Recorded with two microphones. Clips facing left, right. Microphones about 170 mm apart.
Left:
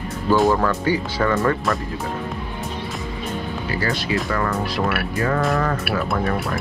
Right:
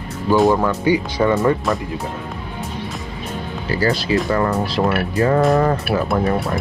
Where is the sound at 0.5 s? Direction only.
15° right (ahead or behind).